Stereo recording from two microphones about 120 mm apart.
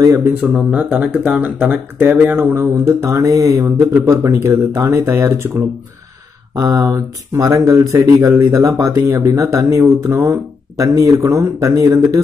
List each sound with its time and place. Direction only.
0.0 s speech: 20° right (ahead or behind)
0.5 s speech: 5° right (ahead or behind); by 5.5 s 20° right (ahead or behind)
6.5 s speech: 30° right (ahead or behind)